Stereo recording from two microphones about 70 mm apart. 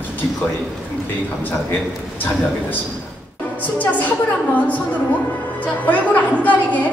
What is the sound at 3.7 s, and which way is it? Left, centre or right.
A woman's voice, left.